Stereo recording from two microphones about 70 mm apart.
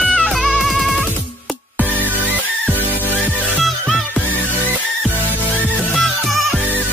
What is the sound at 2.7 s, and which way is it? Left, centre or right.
Music, right.